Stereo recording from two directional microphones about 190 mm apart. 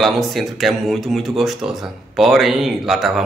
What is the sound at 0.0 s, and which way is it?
Speech, centre (ahead or behind).